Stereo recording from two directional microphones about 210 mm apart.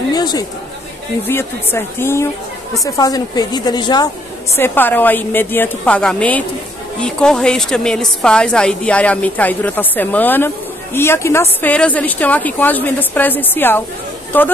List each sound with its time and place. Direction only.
0.1 s a woman's voice: 20° left (ahead or behind)